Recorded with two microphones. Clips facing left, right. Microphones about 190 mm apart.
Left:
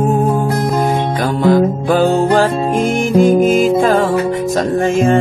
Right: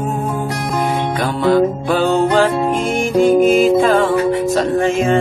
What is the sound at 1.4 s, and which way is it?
Music, 40° left (ahead or behind).